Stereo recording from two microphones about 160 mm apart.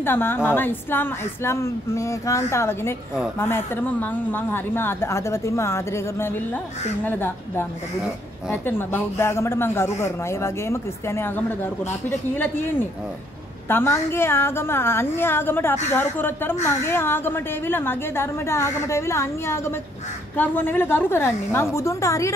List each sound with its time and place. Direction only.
0.0 s speech: 15° left (ahead or behind)
13.7 s speech: 15° left (ahead or behind)